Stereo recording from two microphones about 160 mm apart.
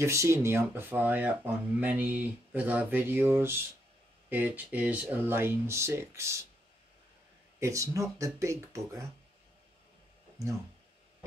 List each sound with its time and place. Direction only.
0.0 s speech: 15° right (ahead or behind)
7.6 s speech: 20° right (ahead or behind)